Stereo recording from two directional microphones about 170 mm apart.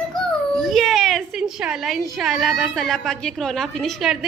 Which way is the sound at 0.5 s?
Centre (ahead or behind).